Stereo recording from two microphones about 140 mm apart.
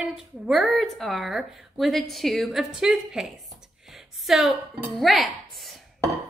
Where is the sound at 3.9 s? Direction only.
Centre (ahead or behind).